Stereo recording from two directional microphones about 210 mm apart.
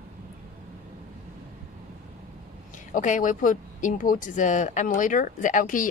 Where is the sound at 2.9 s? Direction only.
35° left (ahead or behind).